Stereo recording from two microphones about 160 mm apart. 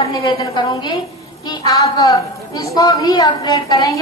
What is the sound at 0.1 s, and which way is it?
A woman's voice, 25° left (ahead or behind).